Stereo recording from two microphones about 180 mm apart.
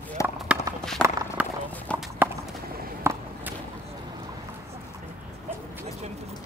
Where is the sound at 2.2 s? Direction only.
10° right (ahead or behind).